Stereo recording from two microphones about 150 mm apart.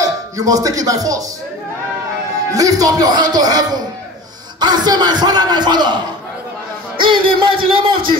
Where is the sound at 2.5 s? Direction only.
25° right (ahead or behind).